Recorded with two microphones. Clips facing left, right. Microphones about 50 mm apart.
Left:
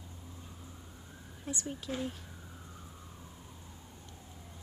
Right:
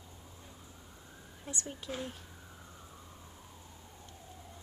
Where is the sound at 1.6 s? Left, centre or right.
Centre.